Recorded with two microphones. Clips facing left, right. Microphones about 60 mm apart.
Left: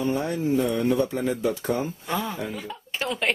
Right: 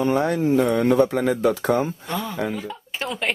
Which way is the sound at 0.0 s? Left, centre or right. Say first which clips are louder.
Right 5 dB; right.